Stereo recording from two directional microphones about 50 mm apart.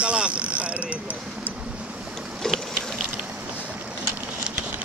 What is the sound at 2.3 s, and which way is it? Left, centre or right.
Mechanisms, centre.